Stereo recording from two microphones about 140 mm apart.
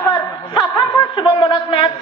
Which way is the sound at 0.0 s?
35° left (ahead or behind).